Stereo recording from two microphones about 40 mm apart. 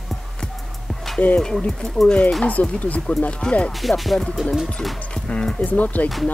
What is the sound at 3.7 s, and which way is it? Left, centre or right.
Speech, centre.